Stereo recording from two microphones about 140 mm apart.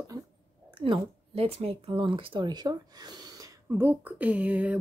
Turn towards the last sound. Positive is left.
turn(degrees=-10)  # may be behind; listen again after turning